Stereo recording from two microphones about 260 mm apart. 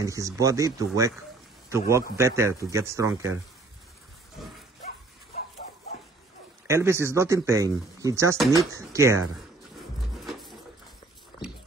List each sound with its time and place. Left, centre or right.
0.0 s speech: centre
6.7 s speech: centre
11.3 s a sound: centre